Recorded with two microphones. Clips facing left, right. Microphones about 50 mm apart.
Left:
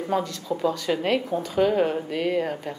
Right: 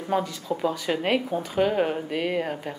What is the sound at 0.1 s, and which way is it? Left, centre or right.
Speech, centre.